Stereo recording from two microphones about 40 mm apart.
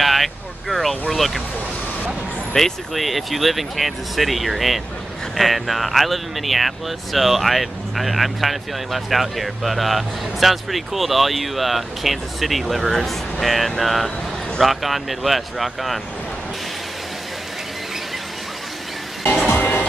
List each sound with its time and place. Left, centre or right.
0.0 s speech: centre
2.5 s speech: centre
19.4 s music: left